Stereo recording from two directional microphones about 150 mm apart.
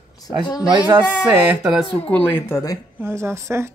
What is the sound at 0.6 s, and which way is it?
Speech, 25° right (ahead or behind).